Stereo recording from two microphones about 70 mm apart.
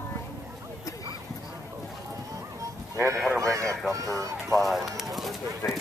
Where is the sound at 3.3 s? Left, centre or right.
Right.